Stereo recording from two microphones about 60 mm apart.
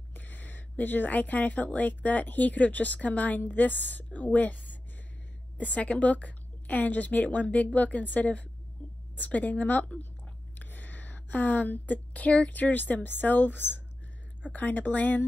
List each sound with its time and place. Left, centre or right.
0.1 s a woman's voice: left